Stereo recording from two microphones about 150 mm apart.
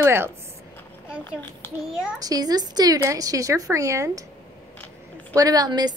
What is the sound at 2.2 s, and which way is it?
Speech, 25° right (ahead or behind).